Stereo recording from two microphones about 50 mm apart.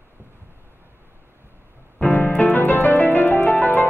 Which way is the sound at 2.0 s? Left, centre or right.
Left.